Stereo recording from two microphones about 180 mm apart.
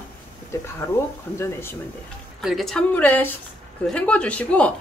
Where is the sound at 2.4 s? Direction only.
Centre (ahead or behind).